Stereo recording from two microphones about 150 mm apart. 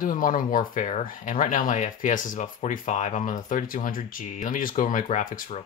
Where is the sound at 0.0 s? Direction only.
65° left (ahead or behind).